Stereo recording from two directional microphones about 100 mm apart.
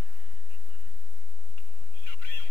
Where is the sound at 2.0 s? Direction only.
20° left (ahead or behind).